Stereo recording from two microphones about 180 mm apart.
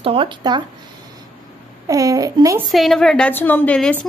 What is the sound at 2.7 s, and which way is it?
Speech, centre (ahead or behind).